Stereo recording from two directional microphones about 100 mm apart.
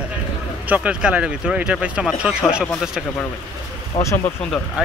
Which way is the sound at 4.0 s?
90° left.